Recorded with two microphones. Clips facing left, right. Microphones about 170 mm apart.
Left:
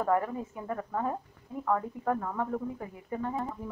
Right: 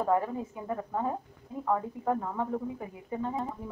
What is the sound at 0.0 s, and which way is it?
A woman's voice, 20° right (ahead or behind).